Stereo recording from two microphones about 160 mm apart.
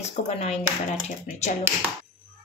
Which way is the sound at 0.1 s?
40° left (ahead or behind).